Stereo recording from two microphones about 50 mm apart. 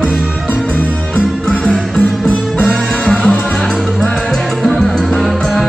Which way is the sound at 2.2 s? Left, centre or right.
Left.